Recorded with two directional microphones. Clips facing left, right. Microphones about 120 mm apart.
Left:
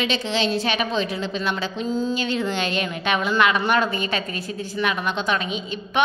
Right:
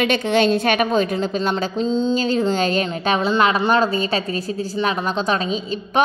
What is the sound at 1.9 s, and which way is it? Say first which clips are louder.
Speech: right 4 dB; 25° right (ahead or behind).